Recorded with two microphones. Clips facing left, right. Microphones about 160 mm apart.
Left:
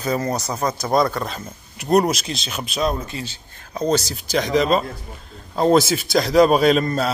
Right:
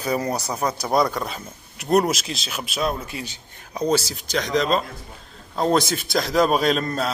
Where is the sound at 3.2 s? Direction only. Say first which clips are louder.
Left 2 dB; 15° right (ahead or behind).